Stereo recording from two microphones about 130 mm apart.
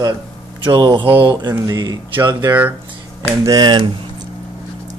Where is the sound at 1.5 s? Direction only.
25° right (ahead or behind).